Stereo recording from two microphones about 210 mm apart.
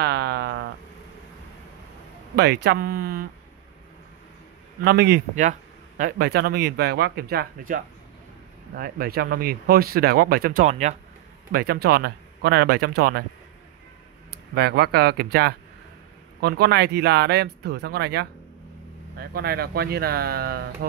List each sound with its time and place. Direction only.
0.0 s a sound: 50° right (ahead or behind)
2.3 s speech: 50° right (ahead or behind)
4.8 s speech: 50° right (ahead or behind)
5.3 s speech: 35° right (ahead or behind)
11.5 s speech: 50° right (ahead or behind)
14.5 s speech: 50° right (ahead or behind)